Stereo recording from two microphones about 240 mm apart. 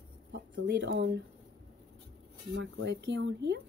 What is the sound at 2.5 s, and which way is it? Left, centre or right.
Speech, right.